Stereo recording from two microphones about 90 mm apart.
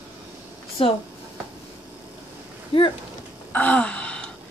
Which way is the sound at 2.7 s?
90° left.